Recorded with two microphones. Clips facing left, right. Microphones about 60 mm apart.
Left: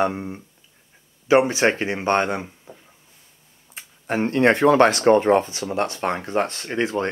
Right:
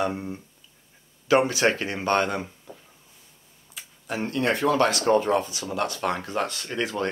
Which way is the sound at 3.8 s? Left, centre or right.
Left.